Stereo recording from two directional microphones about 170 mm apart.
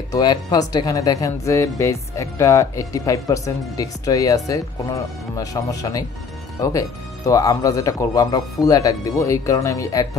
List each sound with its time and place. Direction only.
0.1 s speech: 25° left (ahead or behind)